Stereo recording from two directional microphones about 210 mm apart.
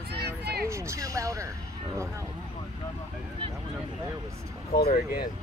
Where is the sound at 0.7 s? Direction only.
15° right (ahead or behind).